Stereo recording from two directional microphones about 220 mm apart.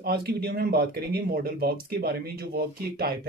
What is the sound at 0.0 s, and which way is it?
Speech, 45° right (ahead or behind).